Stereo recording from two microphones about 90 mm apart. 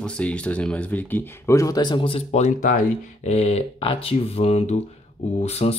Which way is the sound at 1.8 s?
75° left (ahead or behind).